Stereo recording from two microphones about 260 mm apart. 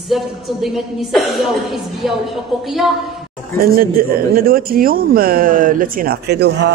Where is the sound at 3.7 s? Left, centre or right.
Right.